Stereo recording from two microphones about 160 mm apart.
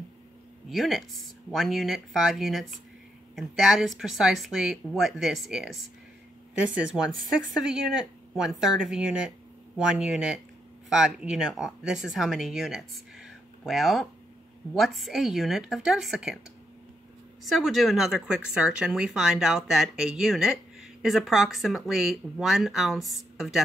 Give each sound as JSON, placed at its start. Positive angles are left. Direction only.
{"t": 0.7, "sound": "speech", "side_deg": 0}
{"t": 17.5, "sound": "speech", "side_deg": 0}